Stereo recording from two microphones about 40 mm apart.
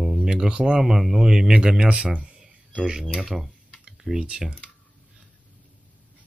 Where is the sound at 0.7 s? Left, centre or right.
Centre.